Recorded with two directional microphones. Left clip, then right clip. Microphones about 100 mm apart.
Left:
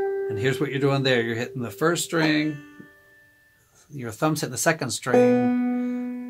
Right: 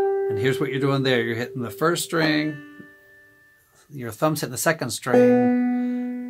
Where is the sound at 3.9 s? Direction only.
30° right (ahead or behind).